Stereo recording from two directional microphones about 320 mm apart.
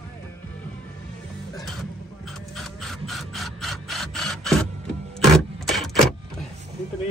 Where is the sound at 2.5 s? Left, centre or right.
Centre.